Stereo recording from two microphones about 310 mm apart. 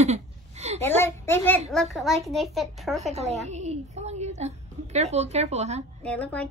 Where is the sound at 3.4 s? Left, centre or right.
Right.